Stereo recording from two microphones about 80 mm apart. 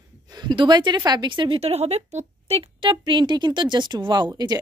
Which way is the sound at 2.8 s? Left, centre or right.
Right.